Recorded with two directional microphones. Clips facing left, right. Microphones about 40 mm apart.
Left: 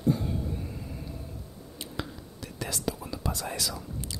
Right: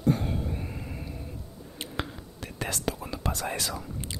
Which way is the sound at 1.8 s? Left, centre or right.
Right.